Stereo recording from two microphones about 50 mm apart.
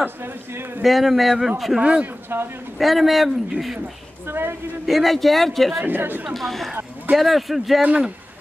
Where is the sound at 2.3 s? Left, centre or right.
Right.